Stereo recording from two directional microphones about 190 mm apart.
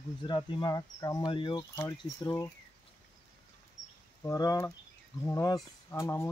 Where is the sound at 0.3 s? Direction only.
25° left (ahead or behind).